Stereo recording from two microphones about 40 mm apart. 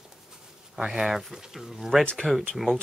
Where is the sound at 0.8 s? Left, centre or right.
Centre.